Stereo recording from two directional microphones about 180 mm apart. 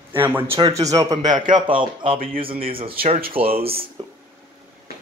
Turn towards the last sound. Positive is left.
turn(degrees=-35)  # may be behind; listen again after turning